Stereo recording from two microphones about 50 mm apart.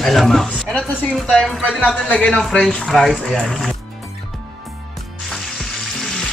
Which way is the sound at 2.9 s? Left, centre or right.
Centre.